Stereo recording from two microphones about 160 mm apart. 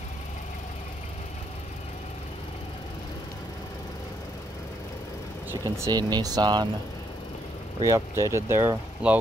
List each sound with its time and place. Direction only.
5.5 s speech: 20° right (ahead or behind)
7.8 s speech: 15° right (ahead or behind)